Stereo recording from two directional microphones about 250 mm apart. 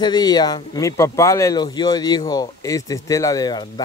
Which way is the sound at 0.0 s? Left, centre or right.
Centre.